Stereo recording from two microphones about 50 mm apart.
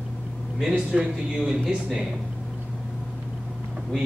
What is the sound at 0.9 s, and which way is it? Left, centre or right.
Speech, centre.